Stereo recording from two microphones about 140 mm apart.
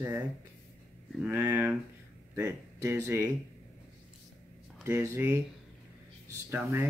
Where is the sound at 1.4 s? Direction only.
15° right (ahead or behind).